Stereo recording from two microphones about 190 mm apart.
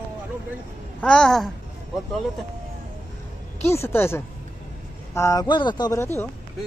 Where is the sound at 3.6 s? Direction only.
15° left (ahead or behind).